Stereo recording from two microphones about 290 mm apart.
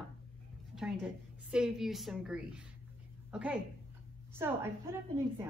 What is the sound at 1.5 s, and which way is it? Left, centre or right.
A woman's voice, centre.